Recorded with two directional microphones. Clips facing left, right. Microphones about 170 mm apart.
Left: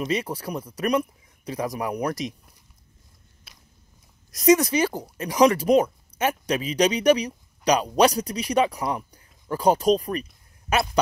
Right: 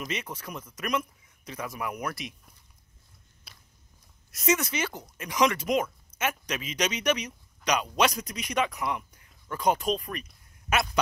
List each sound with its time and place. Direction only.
0.0 s speech: 35° left (ahead or behind)
3.5 s biting: centre (ahead or behind)
4.3 s speech: 35° left (ahead or behind)